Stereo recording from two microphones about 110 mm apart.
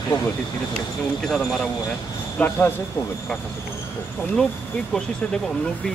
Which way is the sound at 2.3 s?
20° left (ahead or behind).